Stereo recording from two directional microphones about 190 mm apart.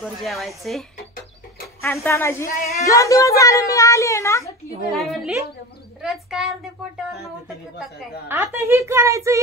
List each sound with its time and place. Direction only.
0.0 s a woman's voice: centre (ahead or behind)
1.8 s a child's voice: 15° left (ahead or behind)
2.4 s a woman's voice: 55° left (ahead or behind)
2.8 s a child's voice: 15° left (ahead or behind)
4.9 s a woman's voice: centre (ahead or behind)
8.3 s a woman's voice: 15° right (ahead or behind)